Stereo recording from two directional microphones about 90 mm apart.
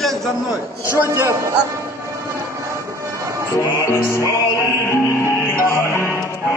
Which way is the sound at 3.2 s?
35° right (ahead or behind).